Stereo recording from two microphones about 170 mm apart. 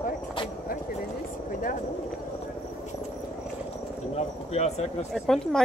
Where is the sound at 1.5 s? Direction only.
55° left (ahead or behind).